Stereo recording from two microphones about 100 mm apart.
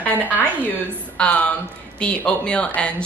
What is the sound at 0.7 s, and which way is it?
A woman's voice, 15° left (ahead or behind).